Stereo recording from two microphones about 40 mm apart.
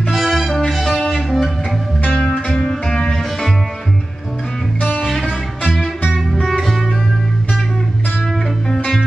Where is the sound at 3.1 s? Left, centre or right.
Centre.